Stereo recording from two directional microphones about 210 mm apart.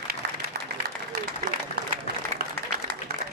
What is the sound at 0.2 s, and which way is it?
Applause, 50° right (ahead or behind).